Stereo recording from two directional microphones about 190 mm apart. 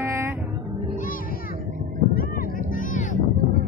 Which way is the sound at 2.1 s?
50° left (ahead or behind).